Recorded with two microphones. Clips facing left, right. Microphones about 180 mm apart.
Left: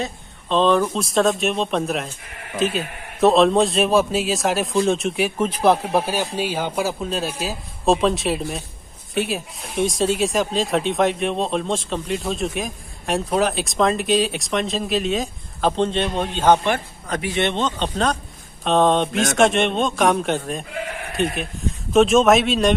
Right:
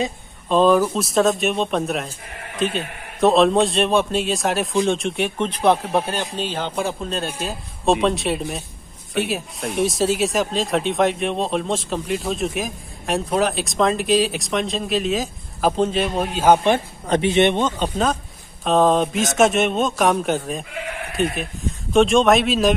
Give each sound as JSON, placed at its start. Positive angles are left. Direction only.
{"t": 0.0, "sound": "speech", "side_deg": -10}
{"t": 16.6, "sound": "speech", "side_deg": -25}